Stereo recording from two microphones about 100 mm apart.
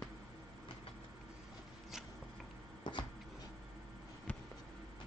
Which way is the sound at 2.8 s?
50° left (ahead or behind).